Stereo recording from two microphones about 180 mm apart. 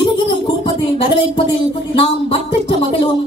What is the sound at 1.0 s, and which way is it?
Speech, 30° left (ahead or behind).